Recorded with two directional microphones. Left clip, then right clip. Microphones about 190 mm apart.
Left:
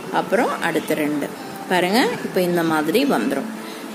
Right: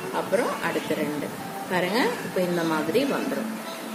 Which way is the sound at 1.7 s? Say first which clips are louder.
Left 6 dB; 55° left (ahead or behind).